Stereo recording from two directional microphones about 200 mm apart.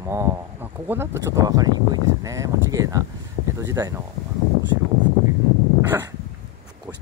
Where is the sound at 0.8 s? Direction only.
10° right (ahead or behind).